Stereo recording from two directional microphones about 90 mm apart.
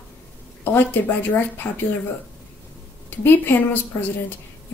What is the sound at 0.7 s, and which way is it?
A woman's voice, 20° left (ahead or behind).